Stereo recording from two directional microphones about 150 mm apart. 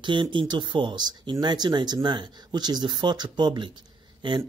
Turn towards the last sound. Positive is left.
turn(degrees=-30)  # may be behind; listen again after turning